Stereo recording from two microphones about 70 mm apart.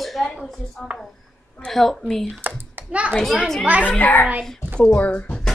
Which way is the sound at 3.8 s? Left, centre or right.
Left.